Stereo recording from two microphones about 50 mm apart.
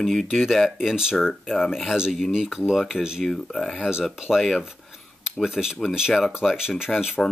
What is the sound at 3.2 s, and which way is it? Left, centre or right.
Speech, centre.